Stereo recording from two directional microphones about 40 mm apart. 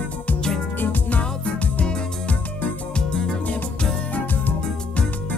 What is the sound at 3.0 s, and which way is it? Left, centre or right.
Music, centre.